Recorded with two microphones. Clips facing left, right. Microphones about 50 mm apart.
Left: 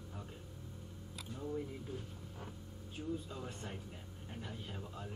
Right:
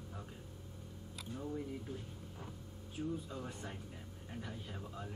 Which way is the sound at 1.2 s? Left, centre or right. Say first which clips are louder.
Right 2 dB; centre.